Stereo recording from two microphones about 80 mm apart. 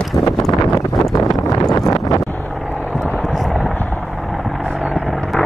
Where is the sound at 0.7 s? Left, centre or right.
Left.